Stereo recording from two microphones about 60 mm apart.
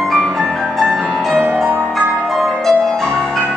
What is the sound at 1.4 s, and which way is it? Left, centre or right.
Music, right.